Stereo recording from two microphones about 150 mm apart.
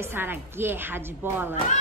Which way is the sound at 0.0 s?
15° right (ahead or behind).